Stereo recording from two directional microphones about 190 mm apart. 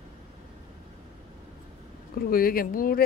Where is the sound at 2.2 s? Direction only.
50° left (ahead or behind).